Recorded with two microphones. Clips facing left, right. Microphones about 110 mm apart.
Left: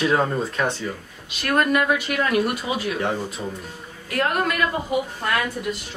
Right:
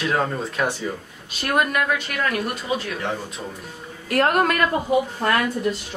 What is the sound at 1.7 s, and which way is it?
Speech, 5° left (ahead or behind).